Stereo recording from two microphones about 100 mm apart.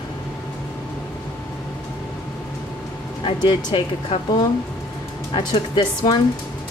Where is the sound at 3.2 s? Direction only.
55° left (ahead or behind).